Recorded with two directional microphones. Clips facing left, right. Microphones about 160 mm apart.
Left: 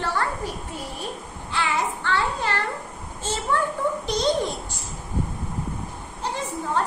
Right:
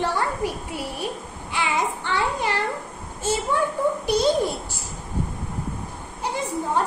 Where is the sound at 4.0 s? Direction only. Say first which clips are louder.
Right 4 dB; 10° right (ahead or behind).